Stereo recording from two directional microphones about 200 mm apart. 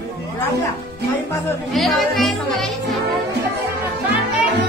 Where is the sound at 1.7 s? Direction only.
Centre (ahead or behind).